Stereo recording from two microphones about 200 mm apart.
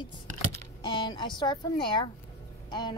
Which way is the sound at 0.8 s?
25° left (ahead or behind).